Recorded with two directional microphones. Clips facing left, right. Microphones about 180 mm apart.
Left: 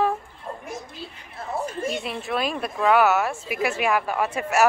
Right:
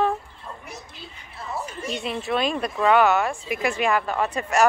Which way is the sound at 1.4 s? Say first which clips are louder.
Left 4 dB; 50° left (ahead or behind).